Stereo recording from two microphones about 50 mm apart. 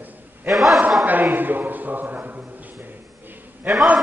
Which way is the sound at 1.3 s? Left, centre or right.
Right.